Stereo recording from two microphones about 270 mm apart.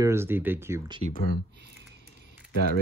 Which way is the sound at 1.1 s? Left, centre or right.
Left.